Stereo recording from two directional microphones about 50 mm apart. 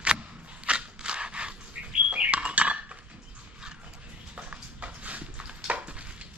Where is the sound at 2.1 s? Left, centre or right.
Right.